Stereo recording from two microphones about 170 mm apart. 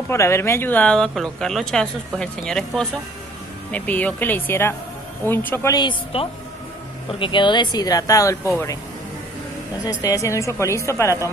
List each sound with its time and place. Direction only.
0.1 s a woman's voice: 15° left (ahead or behind)
9.8 s a woman's voice: 20° left (ahead or behind)